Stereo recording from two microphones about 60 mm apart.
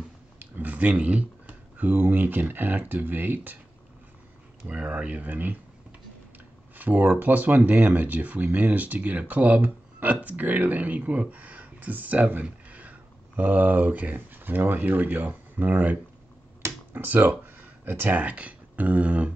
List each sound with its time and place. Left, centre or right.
0.4 s a sound: right
1.8 s speech: right
4.6 s speech: right